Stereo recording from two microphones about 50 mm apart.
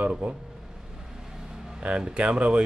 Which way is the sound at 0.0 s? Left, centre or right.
Right.